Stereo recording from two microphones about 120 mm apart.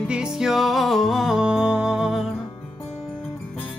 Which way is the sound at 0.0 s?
5° right (ahead or behind).